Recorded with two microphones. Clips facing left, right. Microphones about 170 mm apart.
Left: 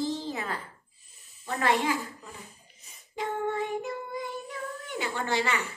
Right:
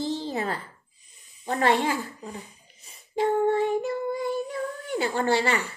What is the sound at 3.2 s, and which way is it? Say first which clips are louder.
Child singing: right 8 dB; 30° right (ahead or behind).